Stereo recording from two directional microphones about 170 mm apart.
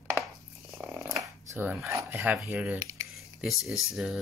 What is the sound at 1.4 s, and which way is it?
Speech, 10° right (ahead or behind).